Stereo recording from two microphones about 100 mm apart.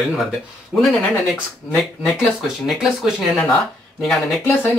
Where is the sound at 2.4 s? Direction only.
5° right (ahead or behind).